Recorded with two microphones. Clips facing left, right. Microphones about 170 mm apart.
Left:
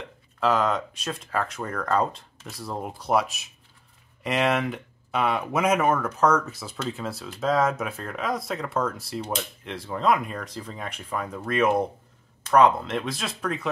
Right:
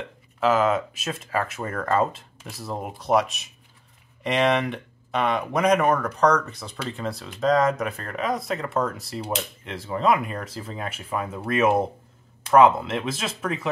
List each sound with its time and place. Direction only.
0.4 s speech: 5° right (ahead or behind)